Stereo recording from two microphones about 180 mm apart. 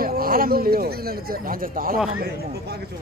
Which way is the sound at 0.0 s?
55° right (ahead or behind).